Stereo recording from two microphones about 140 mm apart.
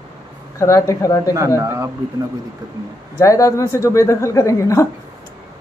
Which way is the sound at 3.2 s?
25° left (ahead or behind).